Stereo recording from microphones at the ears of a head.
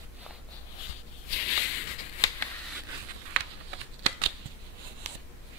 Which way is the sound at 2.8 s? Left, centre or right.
Right.